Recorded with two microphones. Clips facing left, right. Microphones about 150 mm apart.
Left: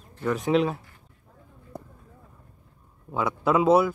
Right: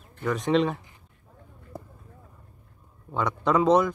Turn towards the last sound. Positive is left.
turn(degrees=5)  # may be behind; listen again after turning